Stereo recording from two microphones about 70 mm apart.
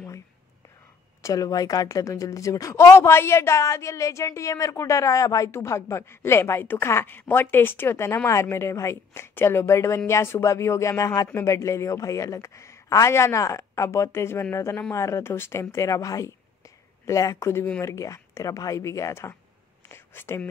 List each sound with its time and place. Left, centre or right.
1.2 s speech: left
5.5 s a woman's voice: left
15.7 s speech: left
19.9 s whispering: left